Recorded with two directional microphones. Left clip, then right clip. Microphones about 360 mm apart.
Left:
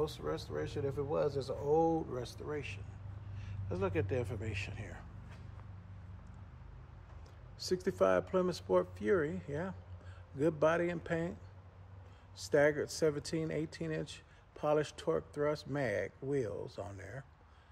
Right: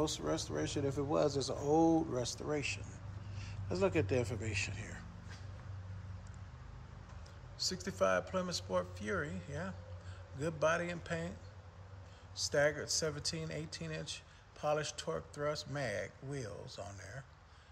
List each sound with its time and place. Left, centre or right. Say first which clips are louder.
0.0 s speech: right 1 dB; centre
7.5 s speech: left 4 dB; centre
12.4 s speech: left 3 dB; centre